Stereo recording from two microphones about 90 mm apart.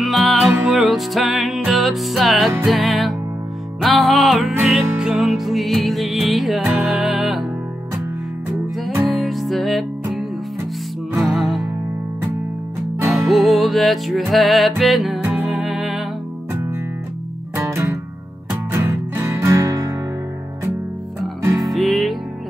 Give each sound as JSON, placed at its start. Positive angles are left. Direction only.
{"t": 0.0, "sound": "music", "side_deg": 0}
{"t": 9.0, "sound": "music", "side_deg": 0}
{"t": 11.1, "sound": "music", "side_deg": 0}
{"t": 13.1, "sound": "music", "side_deg": 0}
{"t": 15.2, "sound": "music", "side_deg": -15}
{"t": 15.6, "sound": "music", "side_deg": -5}
{"t": 17.6, "sound": "music", "side_deg": -35}
{"t": 21.6, "sound": "music", "side_deg": 0}